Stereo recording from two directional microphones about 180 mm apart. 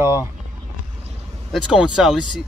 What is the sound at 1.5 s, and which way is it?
Speech, 5° right (ahead or behind).